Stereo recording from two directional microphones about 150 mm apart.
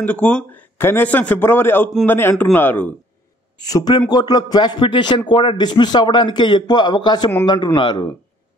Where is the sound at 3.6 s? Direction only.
25° left (ahead or behind).